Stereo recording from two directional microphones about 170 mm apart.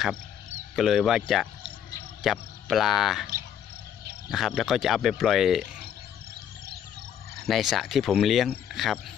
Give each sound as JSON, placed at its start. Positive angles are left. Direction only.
{"t": 0.7, "sound": "speech", "side_deg": 0}
{"t": 4.3, "sound": "speech", "side_deg": 0}
{"t": 7.3, "sound": "speech", "side_deg": 0}